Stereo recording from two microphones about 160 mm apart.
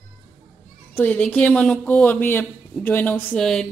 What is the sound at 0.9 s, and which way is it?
A woman's voice, 10° left (ahead or behind).